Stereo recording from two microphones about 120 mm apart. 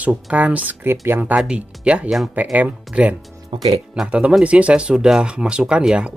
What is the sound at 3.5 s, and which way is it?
Speech, 45° right (ahead or behind).